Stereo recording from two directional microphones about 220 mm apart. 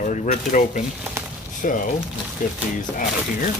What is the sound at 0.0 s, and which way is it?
Speech, 30° left (ahead or behind).